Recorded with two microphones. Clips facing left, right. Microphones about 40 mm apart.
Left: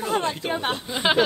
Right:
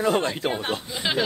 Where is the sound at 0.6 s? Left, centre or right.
Left.